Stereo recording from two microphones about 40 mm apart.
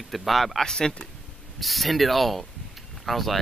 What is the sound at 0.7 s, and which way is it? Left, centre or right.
Speech, centre.